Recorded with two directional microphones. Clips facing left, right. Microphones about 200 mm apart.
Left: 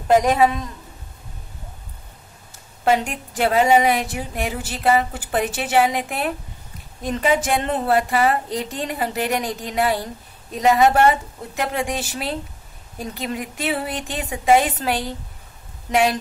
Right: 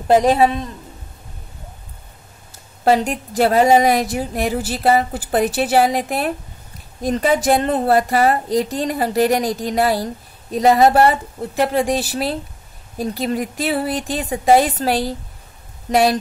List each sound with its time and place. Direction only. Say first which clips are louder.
0.1 s a woman's voice: right 2 dB; 30° right (ahead or behind)
2.8 s a woman's voice: right 4 dB; 35° right (ahead or behind)